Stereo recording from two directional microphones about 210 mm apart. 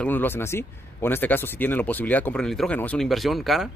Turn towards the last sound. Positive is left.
turn(degrees=0)  # may be behind; listen again after turning